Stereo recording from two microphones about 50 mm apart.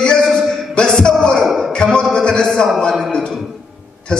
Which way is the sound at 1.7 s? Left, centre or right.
Centre.